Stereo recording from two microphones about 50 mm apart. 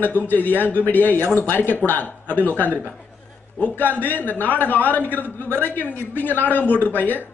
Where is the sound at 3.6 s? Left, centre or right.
Left.